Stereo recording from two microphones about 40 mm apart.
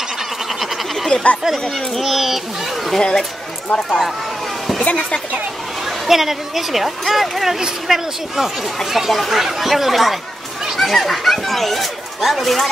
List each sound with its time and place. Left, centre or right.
1.1 s speech: left
2.0 s speech: centre
3.0 s speech: centre
5.9 s speech: centre